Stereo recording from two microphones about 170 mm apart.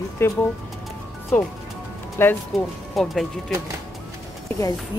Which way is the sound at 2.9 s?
Centre (ahead or behind).